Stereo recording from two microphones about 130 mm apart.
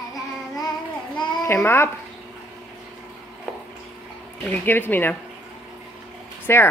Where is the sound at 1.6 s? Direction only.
20° left (ahead or behind).